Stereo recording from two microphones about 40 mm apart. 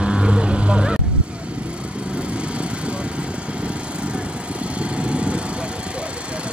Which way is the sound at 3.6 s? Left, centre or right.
Right.